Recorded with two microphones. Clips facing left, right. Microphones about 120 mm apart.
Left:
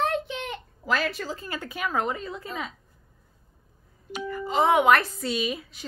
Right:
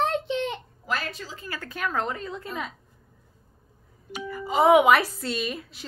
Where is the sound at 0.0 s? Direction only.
25° right (ahead or behind).